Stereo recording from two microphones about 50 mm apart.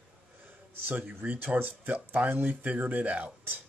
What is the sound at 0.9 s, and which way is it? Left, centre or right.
Speech, right.